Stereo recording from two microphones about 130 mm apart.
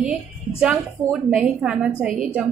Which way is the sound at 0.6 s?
5° right (ahead or behind).